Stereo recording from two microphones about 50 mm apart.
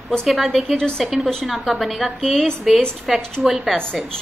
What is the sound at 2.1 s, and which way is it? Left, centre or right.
Speech, centre.